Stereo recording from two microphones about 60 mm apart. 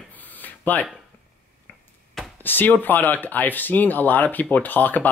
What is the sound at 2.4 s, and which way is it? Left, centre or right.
Speech, left.